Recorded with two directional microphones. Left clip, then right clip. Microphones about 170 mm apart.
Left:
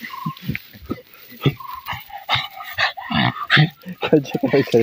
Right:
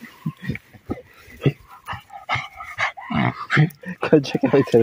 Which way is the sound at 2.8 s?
15° left (ahead or behind).